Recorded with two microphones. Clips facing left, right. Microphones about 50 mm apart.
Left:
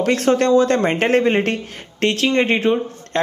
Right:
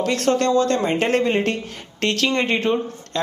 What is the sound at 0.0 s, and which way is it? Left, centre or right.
A woman's voice, left.